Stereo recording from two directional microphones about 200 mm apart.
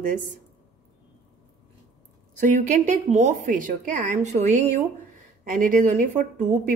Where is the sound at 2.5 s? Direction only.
40° right (ahead or behind).